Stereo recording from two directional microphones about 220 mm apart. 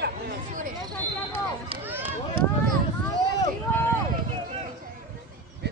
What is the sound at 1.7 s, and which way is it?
Run, 25° right (ahead or behind).